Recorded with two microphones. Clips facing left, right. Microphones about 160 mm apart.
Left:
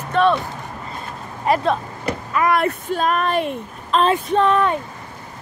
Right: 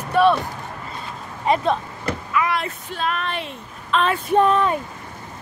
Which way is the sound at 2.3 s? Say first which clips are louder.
Left 5 dB; 45° left (ahead or behind).